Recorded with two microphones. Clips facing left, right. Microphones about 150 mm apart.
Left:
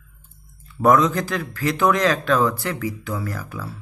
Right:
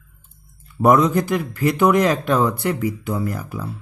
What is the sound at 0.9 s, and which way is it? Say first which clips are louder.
Speech: right 2 dB; 20° right (ahead or behind).